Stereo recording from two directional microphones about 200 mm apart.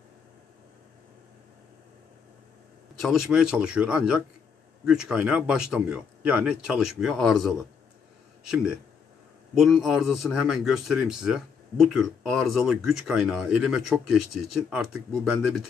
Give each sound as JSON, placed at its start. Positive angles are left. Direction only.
{"t": 3.0, "sound": "speech", "side_deg": 0}
{"t": 9.6, "sound": "speech", "side_deg": 0}